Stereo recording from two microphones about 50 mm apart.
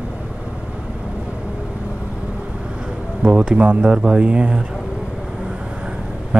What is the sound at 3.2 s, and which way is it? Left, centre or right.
Speech, centre.